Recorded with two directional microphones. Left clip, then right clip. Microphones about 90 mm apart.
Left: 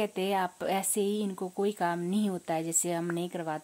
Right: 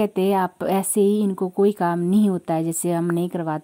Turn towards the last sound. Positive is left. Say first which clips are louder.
# right 9 dB
turn(degrees=-40)  # may be behind; listen again after turning